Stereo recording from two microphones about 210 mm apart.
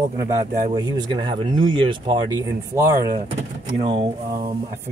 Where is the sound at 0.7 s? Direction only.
20° right (ahead or behind).